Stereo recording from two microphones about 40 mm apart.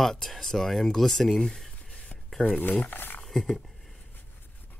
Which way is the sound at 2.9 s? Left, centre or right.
Left.